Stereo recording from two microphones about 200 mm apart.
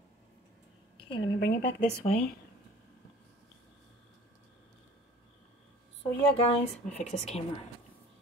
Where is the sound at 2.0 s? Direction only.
30° left (ahead or behind).